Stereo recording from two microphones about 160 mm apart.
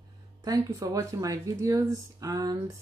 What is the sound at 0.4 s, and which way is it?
Speech, 20° right (ahead or behind).